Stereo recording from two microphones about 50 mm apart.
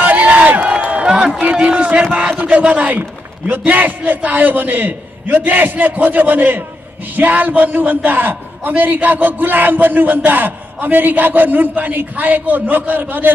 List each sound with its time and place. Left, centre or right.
0.0 s a sound: right
1.0 s run: centre
2.4 s a man's voice: right